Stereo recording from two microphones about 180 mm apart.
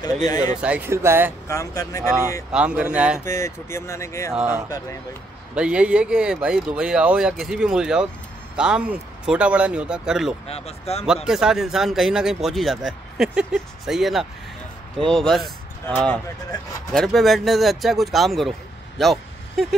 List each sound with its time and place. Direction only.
0.0 s speech: 20° left (ahead or behind)
0.6 s speech: 10° right (ahead or behind)
1.5 s speech: 20° left (ahead or behind)
2.5 s speech: 5° right (ahead or behind)
3.3 s speech: 15° left (ahead or behind)
4.3 s speech: 5° right (ahead or behind)
10.5 s speech: 35° left (ahead or behind)
11.2 s speech: 5° right (ahead or behind)
18.9 s vehicle: centre (ahead or behind)